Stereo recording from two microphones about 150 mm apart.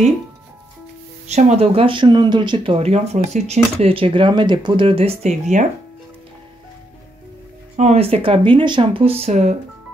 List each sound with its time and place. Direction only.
1.2 s speech: 50° right (ahead or behind)
7.7 s speech: 45° right (ahead or behind)